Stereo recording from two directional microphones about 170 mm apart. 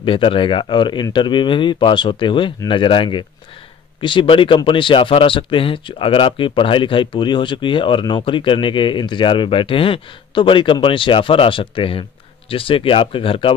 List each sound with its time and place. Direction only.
0.0 s speech: 30° left (ahead or behind)